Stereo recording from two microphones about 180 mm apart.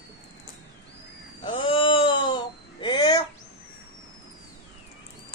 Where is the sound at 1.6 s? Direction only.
30° left (ahead or behind).